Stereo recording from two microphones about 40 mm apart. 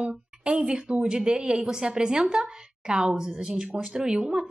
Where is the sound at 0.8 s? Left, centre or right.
Right.